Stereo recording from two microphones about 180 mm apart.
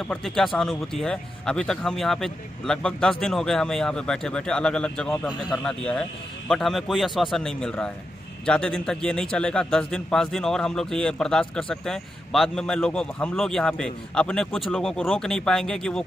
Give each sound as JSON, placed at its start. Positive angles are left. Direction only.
{"t": 0.0, "sound": "a man's voice", "side_deg": 5}